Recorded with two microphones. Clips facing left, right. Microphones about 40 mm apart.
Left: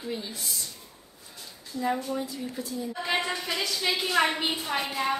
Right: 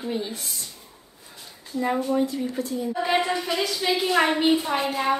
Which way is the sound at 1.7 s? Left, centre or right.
Right.